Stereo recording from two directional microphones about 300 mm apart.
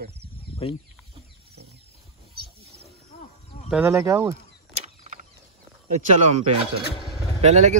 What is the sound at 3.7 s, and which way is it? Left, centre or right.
Speech, centre.